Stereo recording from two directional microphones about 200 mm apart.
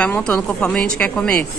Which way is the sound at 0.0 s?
5° left (ahead or behind).